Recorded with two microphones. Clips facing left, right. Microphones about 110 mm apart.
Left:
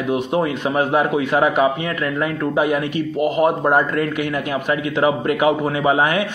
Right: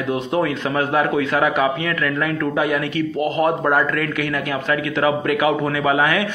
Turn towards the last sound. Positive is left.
turn(degrees=20)  # may be behind; listen again after turning